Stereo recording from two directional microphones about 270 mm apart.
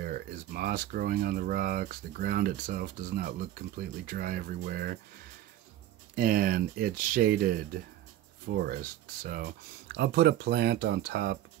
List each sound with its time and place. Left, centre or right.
0.0 s speech: right
6.1 s speech: right